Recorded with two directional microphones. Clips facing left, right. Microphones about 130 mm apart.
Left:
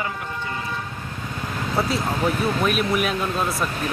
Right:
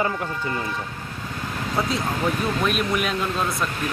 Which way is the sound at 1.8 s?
5° left (ahead or behind).